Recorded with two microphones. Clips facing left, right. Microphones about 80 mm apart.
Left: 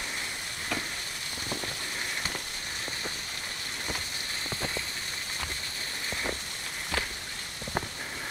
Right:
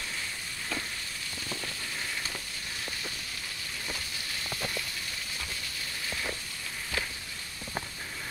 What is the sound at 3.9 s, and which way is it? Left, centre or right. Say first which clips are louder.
Rain on surface: left 2 dB; left.